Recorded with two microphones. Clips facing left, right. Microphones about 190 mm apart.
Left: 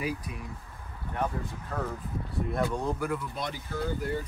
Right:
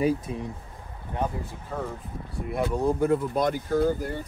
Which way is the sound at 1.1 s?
15° right (ahead or behind).